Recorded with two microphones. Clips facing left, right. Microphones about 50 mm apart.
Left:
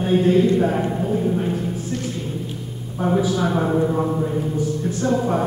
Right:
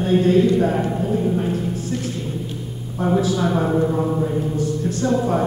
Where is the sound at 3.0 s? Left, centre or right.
Centre.